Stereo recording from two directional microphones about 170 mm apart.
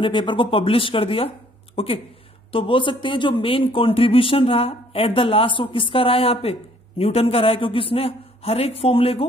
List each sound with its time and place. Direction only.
0.0 s speech: 30° left (ahead or behind)